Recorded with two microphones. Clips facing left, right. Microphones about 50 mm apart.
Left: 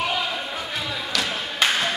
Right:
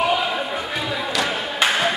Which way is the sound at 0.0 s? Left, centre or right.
Centre.